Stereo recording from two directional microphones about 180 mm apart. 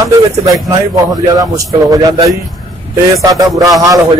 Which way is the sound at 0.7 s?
20° right (ahead or behind).